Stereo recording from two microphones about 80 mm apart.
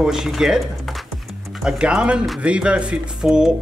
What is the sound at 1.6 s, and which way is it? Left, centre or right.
Speech, centre.